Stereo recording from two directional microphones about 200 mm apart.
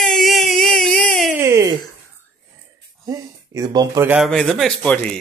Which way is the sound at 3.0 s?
15° right (ahead or behind).